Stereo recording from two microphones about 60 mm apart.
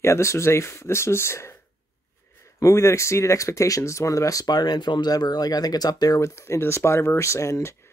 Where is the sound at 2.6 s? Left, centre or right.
Left.